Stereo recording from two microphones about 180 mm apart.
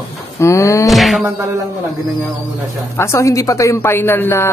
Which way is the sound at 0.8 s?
Centre (ahead or behind).